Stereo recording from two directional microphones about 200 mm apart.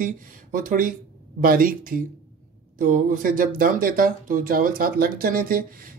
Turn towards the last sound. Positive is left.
turn(degrees=-45)  # may be behind; listen again after turning